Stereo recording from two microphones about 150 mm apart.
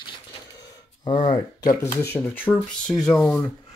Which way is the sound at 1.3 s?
25° left (ahead or behind).